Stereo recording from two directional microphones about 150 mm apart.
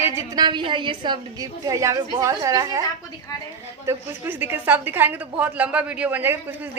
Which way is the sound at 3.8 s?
15° right (ahead or behind).